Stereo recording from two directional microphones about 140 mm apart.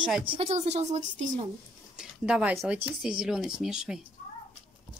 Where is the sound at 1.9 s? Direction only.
5° right (ahead or behind).